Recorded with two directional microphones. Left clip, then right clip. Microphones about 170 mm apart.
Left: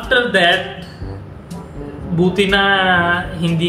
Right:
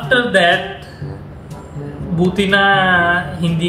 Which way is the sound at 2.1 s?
15° left (ahead or behind).